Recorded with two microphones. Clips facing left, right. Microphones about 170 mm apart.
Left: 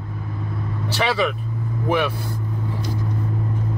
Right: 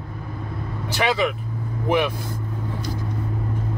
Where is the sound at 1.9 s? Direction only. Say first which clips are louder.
Even; 15° right (ahead or behind).